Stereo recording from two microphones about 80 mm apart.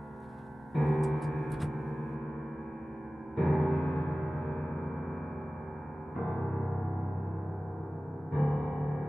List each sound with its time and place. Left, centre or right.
0.7 s piano: centre
3.3 s music: centre
8.4 s music: centre